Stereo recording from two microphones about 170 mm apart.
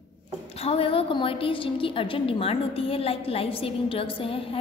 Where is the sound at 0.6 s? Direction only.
35° left (ahead or behind).